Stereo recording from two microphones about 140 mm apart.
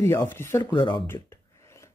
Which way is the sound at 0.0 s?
15° left (ahead or behind).